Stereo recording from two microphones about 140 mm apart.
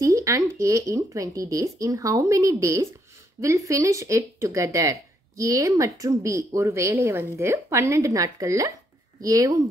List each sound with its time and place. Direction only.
0.0 s speech: 20° right (ahead or behind)